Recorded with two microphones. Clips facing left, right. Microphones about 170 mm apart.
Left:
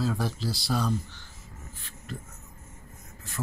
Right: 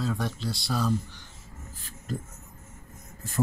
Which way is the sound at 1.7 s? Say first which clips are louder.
Right 6 dB; 40° right (ahead or behind).